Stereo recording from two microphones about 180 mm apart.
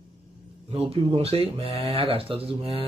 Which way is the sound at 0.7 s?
30° right (ahead or behind).